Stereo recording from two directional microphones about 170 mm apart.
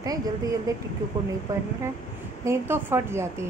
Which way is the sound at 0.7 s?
20° right (ahead or behind).